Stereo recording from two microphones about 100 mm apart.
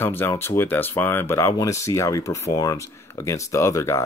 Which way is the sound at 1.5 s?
35° left (ahead or behind).